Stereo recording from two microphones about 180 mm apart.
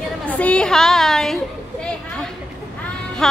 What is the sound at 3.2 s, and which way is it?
Speech, centre (ahead or behind).